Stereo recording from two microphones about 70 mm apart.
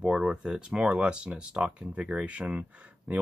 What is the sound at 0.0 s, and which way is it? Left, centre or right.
Speech, centre.